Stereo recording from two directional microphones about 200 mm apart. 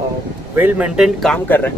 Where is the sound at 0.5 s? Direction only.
10° right (ahead or behind); by 1.7 s 10° left (ahead or behind).